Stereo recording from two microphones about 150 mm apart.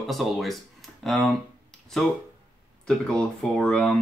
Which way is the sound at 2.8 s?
5° left (ahead or behind).